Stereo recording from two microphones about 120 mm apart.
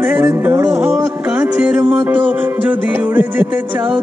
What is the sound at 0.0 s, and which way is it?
Music, 15° right (ahead or behind).